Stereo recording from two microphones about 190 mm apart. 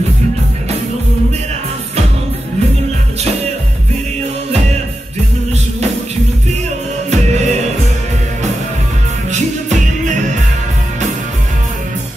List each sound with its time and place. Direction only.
7.1 s music: 35° right (ahead or behind)
9.3 s music: 40° right (ahead or behind)